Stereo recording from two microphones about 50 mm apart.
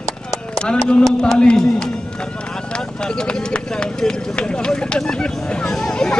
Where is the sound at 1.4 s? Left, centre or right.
Centre.